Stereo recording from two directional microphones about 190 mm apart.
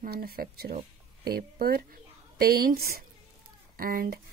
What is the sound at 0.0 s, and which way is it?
A woman's voice, 50° right (ahead or behind).